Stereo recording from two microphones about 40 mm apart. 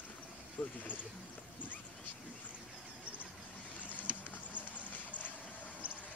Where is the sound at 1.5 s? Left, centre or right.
Left.